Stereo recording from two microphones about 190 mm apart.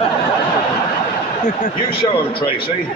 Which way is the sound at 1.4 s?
40° left (ahead or behind).